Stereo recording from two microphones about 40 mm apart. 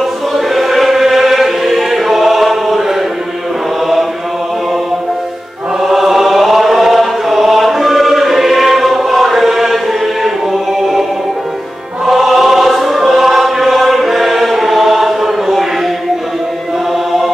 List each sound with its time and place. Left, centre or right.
0.0 s music: centre
5.8 s chant: centre
10.2 s music: centre
12.1 s choir: centre